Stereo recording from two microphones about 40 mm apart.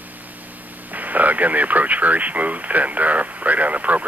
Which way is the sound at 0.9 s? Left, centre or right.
Right.